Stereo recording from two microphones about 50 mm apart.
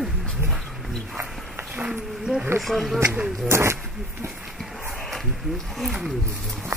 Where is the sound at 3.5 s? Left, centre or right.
Right.